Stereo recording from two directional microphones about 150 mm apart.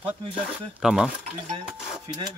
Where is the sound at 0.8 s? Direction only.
5° right (ahead or behind).